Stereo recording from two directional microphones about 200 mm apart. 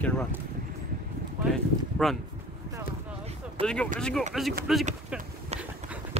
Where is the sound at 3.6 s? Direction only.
5° left (ahead or behind).